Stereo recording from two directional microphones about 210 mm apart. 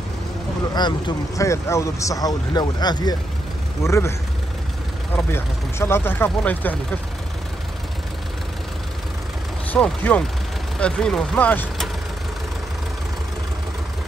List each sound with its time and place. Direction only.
0.7 s speech: 20° left (ahead or behind)
5.1 s speech: 10° left (ahead or behind)
9.7 s speech: 5° left (ahead or behind)